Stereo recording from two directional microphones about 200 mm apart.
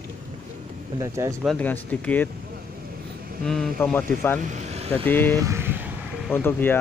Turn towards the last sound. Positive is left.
turn(degrees=10)  # may be behind; listen again after turning